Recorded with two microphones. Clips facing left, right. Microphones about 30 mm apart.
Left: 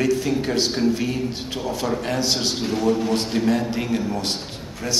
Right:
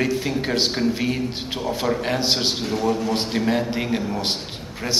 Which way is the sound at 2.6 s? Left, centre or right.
Centre.